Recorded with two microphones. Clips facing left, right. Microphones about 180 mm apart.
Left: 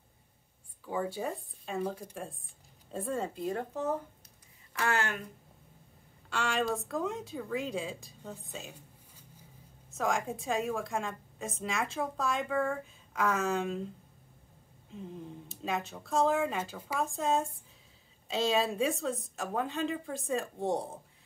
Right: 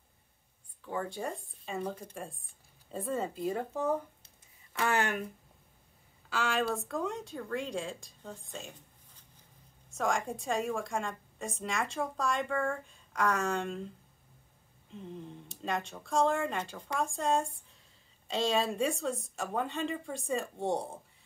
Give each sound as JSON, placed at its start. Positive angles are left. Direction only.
{"t": 0.8, "sound": "speech", "side_deg": 5}
{"t": 4.7, "sound": "speech", "side_deg": -15}
{"t": 6.3, "sound": "speech", "side_deg": 0}
{"t": 14.9, "sound": "speech", "side_deg": 0}